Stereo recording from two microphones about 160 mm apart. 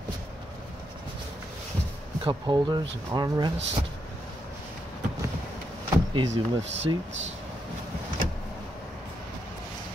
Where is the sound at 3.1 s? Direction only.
25° right (ahead or behind).